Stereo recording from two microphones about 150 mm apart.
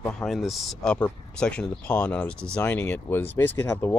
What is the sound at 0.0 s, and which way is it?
Speech, 5° left (ahead or behind).